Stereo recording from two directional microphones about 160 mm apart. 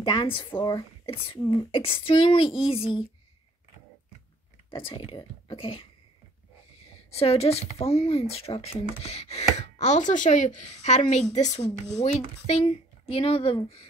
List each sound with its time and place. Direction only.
0.0 s speech: 30° left (ahead or behind)
4.7 s speech: 30° left (ahead or behind)
7.1 s speech: 40° left (ahead or behind)